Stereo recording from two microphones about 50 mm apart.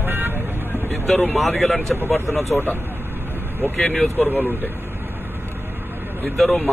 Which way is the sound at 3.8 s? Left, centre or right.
Centre.